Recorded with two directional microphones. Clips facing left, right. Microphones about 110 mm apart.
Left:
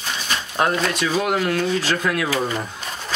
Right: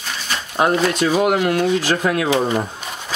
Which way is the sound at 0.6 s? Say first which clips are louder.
Right 4 dB; 15° right (ahead or behind).